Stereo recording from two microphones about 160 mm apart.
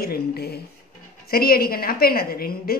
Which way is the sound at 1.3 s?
70° left (ahead or behind).